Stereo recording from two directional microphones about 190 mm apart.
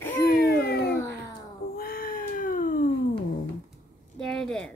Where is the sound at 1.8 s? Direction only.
50° left (ahead or behind).